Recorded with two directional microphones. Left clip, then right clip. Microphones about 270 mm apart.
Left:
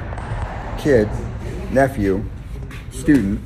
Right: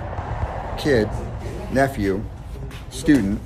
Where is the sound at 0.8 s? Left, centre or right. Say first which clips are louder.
Left 4 dB; centre.